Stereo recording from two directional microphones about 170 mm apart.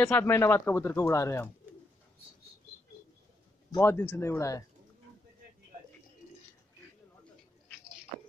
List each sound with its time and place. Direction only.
0.0 s speech: 10° left (ahead or behind)
3.7 s speech: 15° left (ahead or behind)